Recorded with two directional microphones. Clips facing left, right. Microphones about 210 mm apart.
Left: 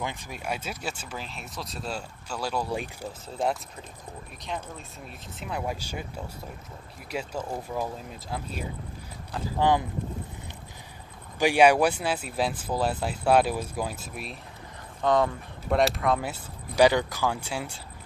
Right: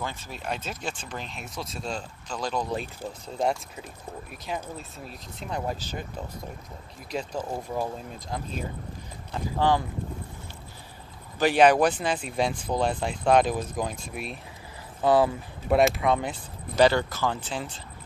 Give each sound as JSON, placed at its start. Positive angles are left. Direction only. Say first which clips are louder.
{"t": 0.0, "sound": "speech", "louder": "even", "side_deg": 15}
{"t": 9.6, "sound": "speech", "louder": "even", "side_deg": 20}
{"t": 11.3, "sound": "speech", "louder": "even", "side_deg": 10}